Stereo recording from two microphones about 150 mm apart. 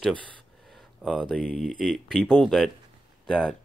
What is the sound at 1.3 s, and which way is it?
Speech, 5° left (ahead or behind).